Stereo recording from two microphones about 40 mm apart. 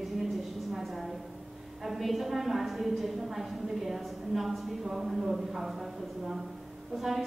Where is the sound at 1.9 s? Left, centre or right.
Centre.